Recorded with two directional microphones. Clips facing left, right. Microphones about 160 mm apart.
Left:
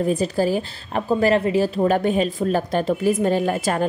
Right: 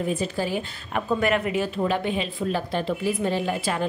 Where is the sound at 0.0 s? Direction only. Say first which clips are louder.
Left 6 dB; 40° left (ahead or behind).